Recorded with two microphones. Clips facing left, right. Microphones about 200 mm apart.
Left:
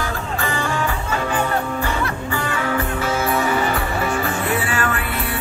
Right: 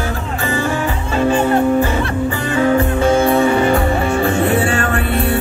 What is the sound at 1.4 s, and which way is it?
Music, 35° right (ahead or behind).